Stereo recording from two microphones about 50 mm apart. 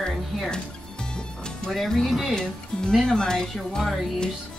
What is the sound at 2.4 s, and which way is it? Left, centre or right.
Speech, centre.